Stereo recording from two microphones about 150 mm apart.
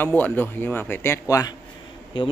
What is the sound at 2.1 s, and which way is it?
Speech, 30° left (ahead or behind).